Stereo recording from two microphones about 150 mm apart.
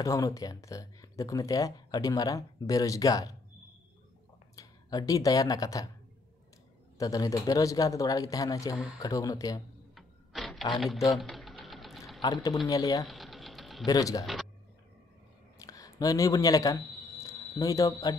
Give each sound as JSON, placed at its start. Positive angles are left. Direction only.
{"t": 0.0, "sound": "speech", "side_deg": 20}
{"t": 4.6, "sound": "speech", "side_deg": 25}
{"t": 7.0, "sound": "speech", "side_deg": 25}
{"t": 9.9, "sound": "printer", "side_deg": 0}
{"t": 10.7, "sound": "speech", "side_deg": 0}
{"t": 11.1, "sound": "sewing machine", "side_deg": 0}
{"t": 12.2, "sound": "speech", "side_deg": 25}
{"t": 13.0, "sound": "a sound", "side_deg": 0}
{"t": 13.8, "sound": "speech", "side_deg": 25}
{"t": 14.2, "sound": "speech", "side_deg": 0}
{"t": 15.6, "sound": "a sound", "side_deg": 20}